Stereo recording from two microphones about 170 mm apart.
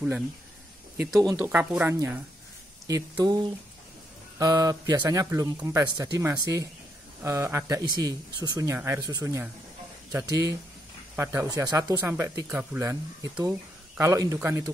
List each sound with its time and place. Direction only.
1.2 s speech: 15° right (ahead or behind)
2.9 s speech: 25° right (ahead or behind)